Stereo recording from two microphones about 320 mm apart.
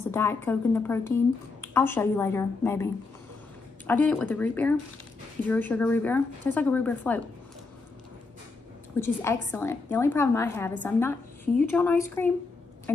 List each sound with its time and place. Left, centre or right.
0.1 s a woman's voice: centre
8.9 s a woman's voice: centre